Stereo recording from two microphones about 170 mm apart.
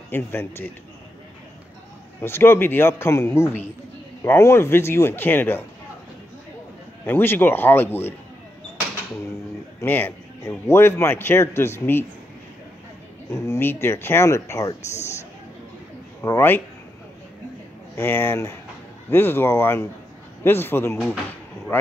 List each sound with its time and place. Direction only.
0.1 s speech: 15° left (ahead or behind)
2.2 s speech: 15° left (ahead or behind)
7.1 s speech: 10° left (ahead or behind)
9.8 s speech: 10° left (ahead or behind)
13.3 s speech: 15° left (ahead or behind)
16.2 s speech: 15° left (ahead or behind)
17.9 s speech: 15° left (ahead or behind)